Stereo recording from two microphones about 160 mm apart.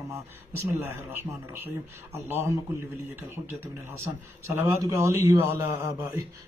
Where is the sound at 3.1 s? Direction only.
15° right (ahead or behind).